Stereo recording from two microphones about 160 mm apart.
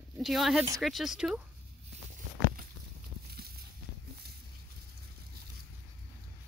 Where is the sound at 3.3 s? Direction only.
75° right (ahead or behind).